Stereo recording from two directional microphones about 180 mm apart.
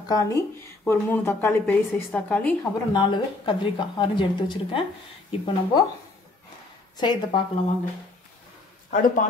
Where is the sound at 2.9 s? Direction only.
25° left (ahead or behind).